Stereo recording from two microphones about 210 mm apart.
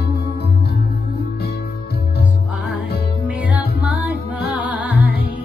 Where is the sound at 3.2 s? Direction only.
5° right (ahead or behind).